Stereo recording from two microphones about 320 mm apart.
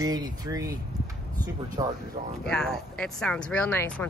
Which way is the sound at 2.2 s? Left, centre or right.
Right.